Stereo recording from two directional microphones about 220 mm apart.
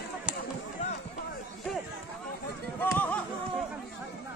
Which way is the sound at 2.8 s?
10° left (ahead or behind).